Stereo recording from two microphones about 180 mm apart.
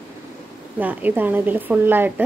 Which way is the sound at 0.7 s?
10° right (ahead or behind).